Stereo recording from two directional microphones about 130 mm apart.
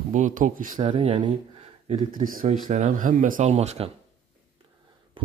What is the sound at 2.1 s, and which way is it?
Speech, 90° right.